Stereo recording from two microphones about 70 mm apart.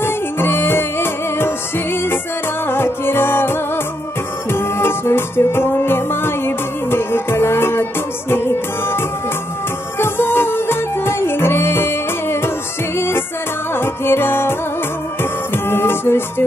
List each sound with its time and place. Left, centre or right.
0.0 s music: left
2.6 s music: left
15.5 s music: left